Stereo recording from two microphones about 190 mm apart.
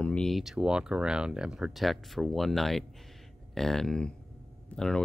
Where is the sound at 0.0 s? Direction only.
5° left (ahead or behind).